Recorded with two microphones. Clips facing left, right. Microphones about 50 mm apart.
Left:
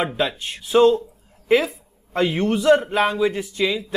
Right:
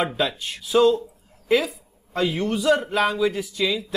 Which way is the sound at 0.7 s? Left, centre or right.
Left.